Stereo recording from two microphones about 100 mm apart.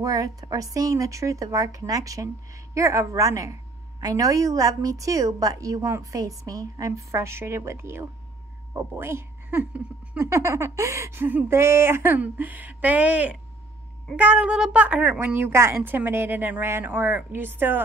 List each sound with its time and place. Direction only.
0.0 s speech: 35° right (ahead or behind); by 17.8 s 20° right (ahead or behind)